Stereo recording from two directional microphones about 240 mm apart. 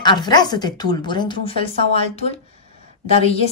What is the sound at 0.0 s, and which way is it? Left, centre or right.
A woman's voice, centre.